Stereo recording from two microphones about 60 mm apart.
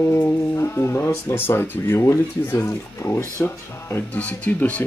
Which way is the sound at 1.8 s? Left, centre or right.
Left.